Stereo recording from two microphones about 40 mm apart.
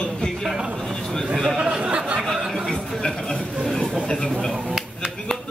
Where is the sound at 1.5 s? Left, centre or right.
Centre.